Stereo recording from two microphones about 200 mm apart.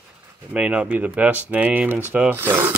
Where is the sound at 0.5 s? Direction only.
5° right (ahead or behind).